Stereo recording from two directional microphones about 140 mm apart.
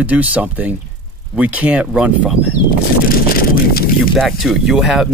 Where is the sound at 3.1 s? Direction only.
90° left.